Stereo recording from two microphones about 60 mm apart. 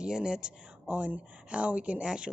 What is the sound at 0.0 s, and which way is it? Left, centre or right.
A woman's voice, centre.